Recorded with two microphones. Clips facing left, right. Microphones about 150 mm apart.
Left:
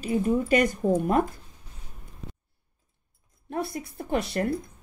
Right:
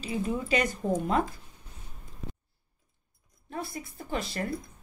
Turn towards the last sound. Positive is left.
turn(degrees=65)  # may be behind; listen again after turning